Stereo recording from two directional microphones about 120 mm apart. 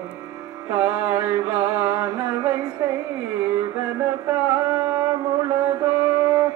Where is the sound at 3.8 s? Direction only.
20° right (ahead or behind).